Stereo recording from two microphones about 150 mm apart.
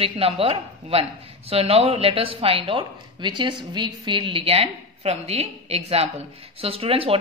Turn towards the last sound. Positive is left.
turn(degrees=-40)  # may be behind; listen again after turning